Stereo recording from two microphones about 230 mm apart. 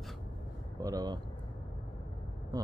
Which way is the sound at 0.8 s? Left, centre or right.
Centre.